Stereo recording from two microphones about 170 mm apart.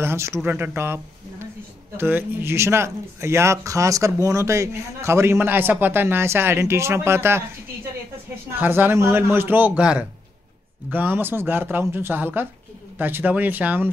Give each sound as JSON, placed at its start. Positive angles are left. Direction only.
{"t": 0.0, "sound": "a man's voice", "side_deg": -15}
{"t": 8.5, "sound": "a man's voice", "side_deg": -10}